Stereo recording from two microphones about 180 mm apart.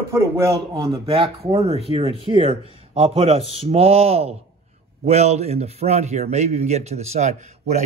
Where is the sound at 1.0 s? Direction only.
35° right (ahead or behind).